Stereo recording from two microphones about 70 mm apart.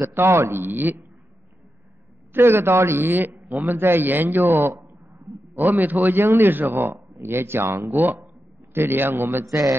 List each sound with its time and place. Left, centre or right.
0.0 s a man's voice: right
2.3 s a man's voice: right